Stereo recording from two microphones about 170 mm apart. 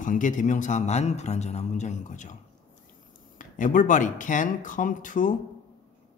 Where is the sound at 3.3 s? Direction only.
50° left (ahead or behind).